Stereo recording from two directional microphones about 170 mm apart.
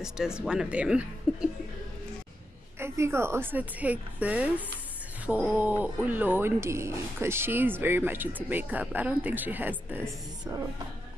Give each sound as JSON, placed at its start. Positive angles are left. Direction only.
{"t": 0.0, "sound": "speech", "side_deg": -5}
{"t": 2.8, "sound": "speech", "side_deg": -15}